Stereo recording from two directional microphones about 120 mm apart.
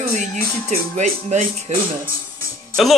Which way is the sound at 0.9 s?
85° right.